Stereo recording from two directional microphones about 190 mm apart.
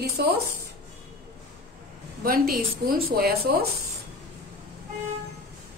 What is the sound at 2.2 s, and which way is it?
Speech, 50° right (ahead or behind).